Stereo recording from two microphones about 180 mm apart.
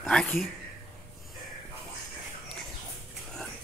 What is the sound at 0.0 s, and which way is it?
Speech, 5° left (ahead or behind).